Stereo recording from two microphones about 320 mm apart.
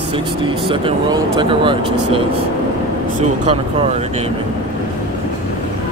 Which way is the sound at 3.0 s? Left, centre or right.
Right.